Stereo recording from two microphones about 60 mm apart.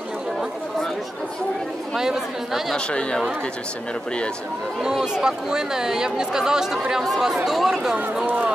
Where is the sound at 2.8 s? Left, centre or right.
Centre.